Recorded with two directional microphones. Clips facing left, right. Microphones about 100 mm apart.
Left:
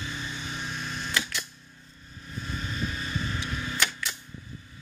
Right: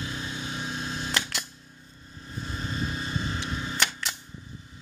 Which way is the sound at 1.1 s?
60° right (ahead or behind).